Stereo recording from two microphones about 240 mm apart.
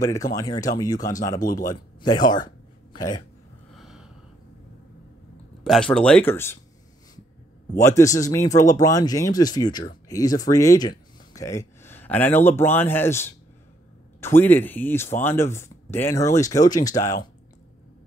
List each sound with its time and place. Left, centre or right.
0.0 s speech: centre
1.3 s speech: left
2.0 s speech: centre
3.7 s a sound: centre
5.6 s speech: centre
7.7 s speech: centre